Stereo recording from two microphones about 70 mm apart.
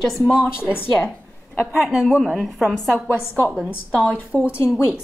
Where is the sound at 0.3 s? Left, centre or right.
Centre.